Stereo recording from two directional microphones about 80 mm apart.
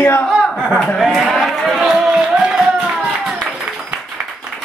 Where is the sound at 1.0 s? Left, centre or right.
Centre.